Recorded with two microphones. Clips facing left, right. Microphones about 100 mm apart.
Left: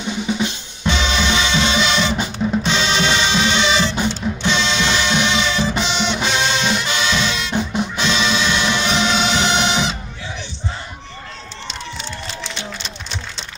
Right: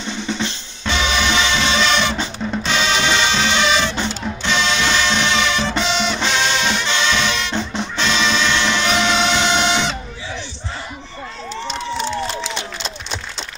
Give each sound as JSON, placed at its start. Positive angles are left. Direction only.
{"t": 0.0, "sound": "music", "side_deg": 10}
{"t": 2.8, "sound": "music", "side_deg": -15}
{"t": 3.1, "sound": "music", "side_deg": 15}
{"t": 6.2, "sound": "music", "side_deg": 15}